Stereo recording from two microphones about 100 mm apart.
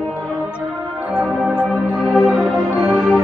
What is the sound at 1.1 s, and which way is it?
Music, 10° right (ahead or behind).